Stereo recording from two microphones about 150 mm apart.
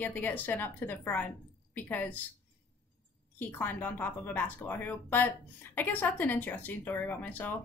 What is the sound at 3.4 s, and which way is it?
Speech, 10° left (ahead or behind).